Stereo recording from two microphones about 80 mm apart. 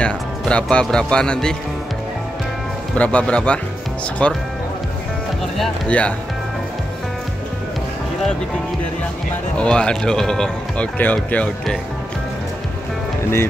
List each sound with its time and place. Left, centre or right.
0.0 s speech: centre
3.0 s speech: centre
5.9 s speech: centre
9.6 s speech: centre
11.0 s speech: left